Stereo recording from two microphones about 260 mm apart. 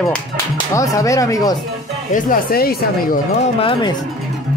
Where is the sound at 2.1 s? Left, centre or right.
Left.